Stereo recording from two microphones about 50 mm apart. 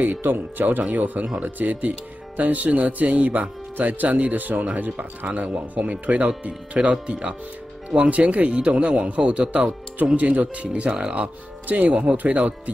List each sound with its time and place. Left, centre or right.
0.0 s speech: right
11.6 s speech: right